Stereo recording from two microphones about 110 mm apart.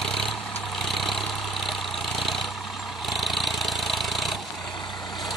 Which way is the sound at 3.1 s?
Centre (ahead or behind).